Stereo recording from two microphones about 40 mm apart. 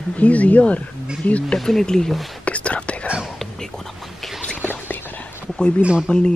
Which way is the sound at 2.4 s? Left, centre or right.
Left.